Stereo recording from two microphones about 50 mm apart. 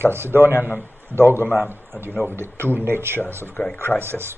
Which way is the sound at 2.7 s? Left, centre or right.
Right.